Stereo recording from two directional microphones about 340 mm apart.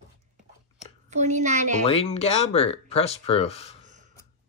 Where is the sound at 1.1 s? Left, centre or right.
Right.